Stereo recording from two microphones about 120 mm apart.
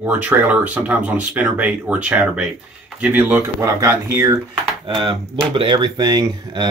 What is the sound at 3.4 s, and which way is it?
Speech, 25° right (ahead or behind).